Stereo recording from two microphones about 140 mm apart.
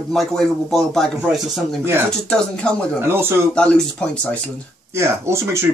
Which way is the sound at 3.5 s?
5° left (ahead or behind).